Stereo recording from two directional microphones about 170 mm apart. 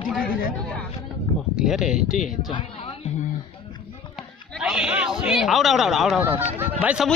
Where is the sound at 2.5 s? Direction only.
30° left (ahead or behind).